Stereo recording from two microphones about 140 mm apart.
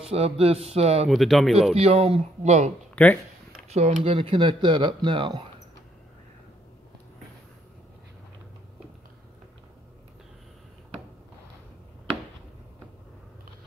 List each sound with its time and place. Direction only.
0.0 s a man's voice: 45° right (ahead or behind)
1.0 s speech: centre (ahead or behind)
1.8 s a man's voice: 45° right (ahead or behind)